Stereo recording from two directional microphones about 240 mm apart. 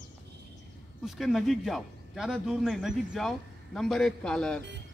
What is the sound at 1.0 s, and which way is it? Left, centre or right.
A man's voice, centre.